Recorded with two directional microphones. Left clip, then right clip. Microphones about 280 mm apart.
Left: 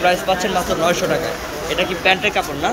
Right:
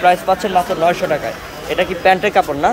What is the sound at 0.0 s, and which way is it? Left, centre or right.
Speech, centre.